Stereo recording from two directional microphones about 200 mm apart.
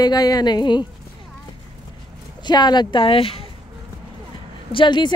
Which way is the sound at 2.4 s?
20° left (ahead or behind).